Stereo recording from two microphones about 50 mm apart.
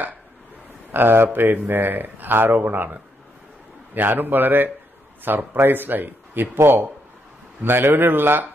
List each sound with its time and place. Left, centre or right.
0.9 s speech: right